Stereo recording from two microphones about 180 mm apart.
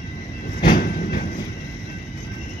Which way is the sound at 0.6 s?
55° left (ahead or behind).